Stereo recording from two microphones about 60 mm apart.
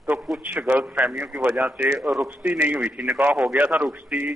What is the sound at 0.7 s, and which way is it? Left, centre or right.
A man's voice, right.